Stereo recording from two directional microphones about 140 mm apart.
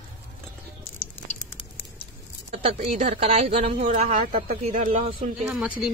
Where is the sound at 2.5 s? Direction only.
45° right (ahead or behind).